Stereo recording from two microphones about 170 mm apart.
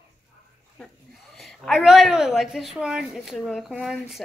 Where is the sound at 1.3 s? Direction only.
Centre (ahead or behind).